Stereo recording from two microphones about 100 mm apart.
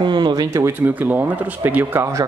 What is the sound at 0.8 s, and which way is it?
Speech, 15° right (ahead or behind).